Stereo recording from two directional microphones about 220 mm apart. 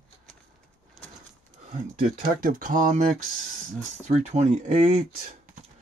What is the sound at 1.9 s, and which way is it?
Speech, 40° right (ahead or behind).